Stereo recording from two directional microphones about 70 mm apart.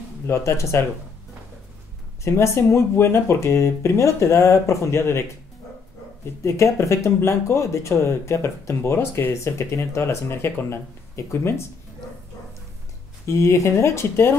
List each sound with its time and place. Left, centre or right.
0.3 s speech: left
2.2 s speech: left
6.4 s speech: left
13.3 s speech: left